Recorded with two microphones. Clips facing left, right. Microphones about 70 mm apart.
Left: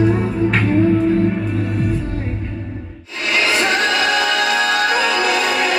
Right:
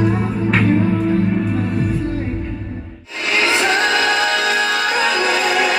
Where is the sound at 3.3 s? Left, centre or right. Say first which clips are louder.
Right 1 dB; right.